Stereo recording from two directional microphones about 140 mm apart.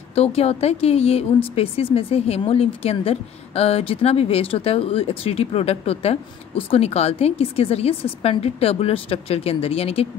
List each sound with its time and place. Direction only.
0.1 s speech: 45° left (ahead or behind)